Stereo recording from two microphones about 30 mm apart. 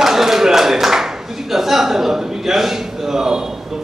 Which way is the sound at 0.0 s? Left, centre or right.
Centre.